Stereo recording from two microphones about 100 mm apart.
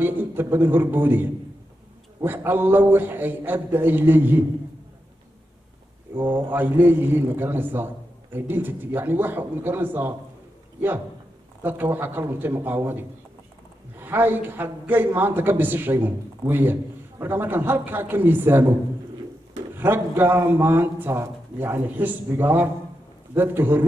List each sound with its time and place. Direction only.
0.0 s a man's voice: 20° right (ahead or behind)
6.1 s a man's voice: 20° right (ahead or behind)
11.6 s a man's voice: 20° right (ahead or behind)
19.8 s a man's voice: 20° right (ahead or behind)